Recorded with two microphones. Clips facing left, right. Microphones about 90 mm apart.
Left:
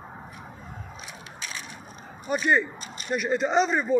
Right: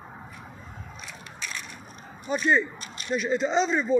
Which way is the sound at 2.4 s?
5° left (ahead or behind).